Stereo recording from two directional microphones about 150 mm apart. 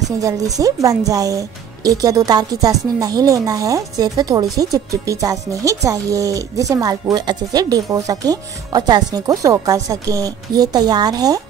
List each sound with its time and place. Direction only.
0.6 s speech: 20° right (ahead or behind)